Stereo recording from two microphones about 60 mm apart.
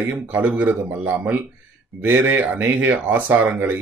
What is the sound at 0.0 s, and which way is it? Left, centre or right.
Speech, right.